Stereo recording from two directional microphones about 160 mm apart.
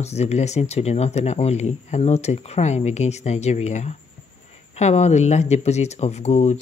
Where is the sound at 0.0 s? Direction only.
40° left (ahead or behind).